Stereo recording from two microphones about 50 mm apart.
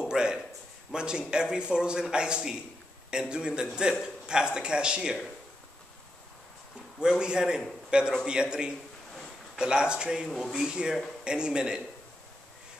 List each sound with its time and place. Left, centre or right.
0.1 s a man's voice: centre
7.0 s a man's voice: centre
10.2 s speech: centre
10.5 s a man's voice: centre